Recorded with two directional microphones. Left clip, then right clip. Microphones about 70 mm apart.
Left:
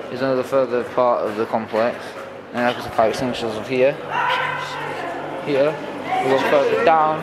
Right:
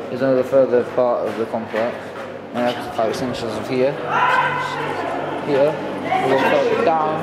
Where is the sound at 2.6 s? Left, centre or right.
Left.